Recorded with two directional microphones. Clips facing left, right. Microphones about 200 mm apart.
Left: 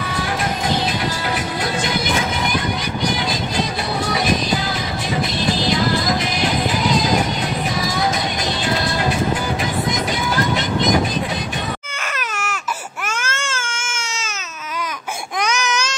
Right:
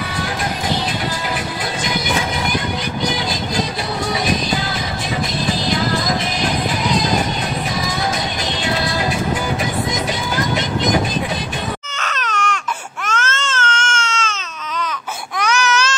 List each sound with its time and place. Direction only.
12.0 s baby cry: 10° left (ahead or behind)
15.3 s baby cry: 15° left (ahead or behind)